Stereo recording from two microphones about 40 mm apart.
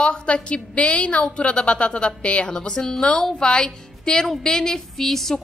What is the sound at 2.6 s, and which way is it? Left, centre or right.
A woman's voice, centre.